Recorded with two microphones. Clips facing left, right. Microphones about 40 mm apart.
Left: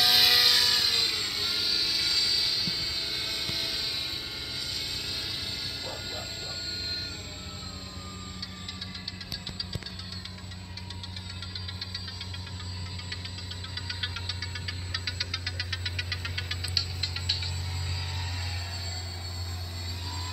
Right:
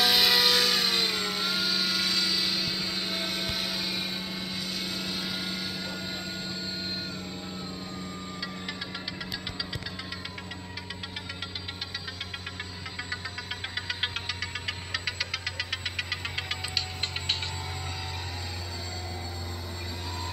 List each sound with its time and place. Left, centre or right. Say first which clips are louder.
0.0 s vehicle: even; centre
4.7 s helicopter: right 2 dB; centre
13.7 s music: right 3 dB; right